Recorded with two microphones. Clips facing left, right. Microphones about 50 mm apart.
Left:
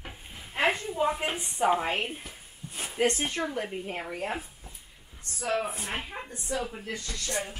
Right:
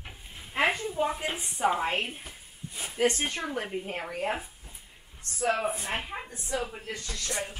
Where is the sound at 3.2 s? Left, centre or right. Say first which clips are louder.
Left 1 dB; centre.